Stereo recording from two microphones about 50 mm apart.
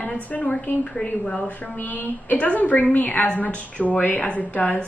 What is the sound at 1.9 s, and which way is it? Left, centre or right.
A woman's voice, left.